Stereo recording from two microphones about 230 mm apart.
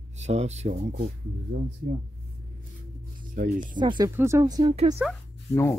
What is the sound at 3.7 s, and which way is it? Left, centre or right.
A woman's voice, centre.